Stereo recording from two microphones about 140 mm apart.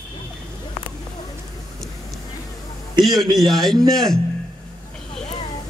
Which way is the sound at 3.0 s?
Centre (ahead or behind).